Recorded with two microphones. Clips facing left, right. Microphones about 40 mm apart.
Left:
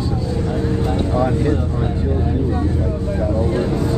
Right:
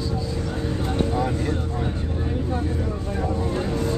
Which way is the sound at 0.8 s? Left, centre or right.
Left.